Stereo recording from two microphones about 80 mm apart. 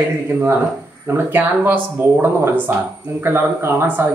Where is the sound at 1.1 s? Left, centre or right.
Right.